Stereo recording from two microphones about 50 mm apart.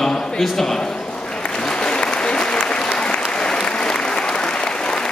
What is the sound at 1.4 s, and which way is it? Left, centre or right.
Applause, centre.